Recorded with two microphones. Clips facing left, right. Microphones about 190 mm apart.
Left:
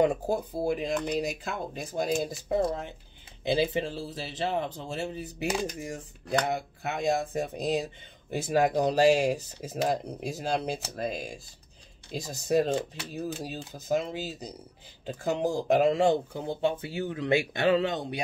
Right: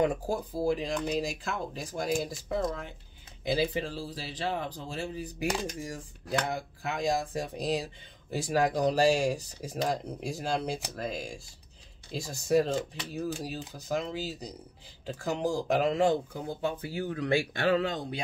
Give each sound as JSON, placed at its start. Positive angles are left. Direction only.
{"t": 0.0, "sound": "speech", "side_deg": 20}